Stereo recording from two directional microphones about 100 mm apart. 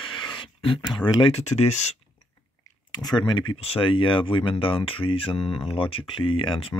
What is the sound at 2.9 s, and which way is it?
Speech, 45° left (ahead or behind).